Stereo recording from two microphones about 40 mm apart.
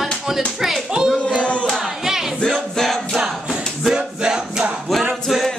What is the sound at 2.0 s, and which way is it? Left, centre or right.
A capella, centre.